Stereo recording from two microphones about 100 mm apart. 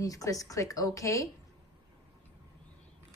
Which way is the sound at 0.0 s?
35° left (ahead or behind).